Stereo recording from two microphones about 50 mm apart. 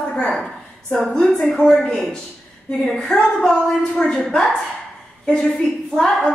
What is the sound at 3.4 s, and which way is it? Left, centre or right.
Speech, centre.